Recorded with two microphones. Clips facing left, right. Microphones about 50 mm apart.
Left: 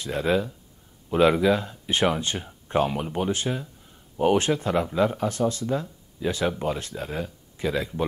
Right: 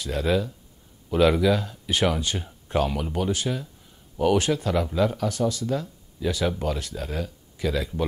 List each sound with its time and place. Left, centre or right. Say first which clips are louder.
0.0 s speech: even; left